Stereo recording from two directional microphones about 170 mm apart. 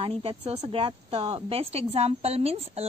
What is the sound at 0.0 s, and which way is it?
Speech, 35° right (ahead or behind).